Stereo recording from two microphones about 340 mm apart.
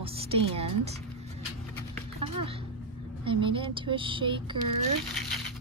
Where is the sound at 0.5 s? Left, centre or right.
Centre.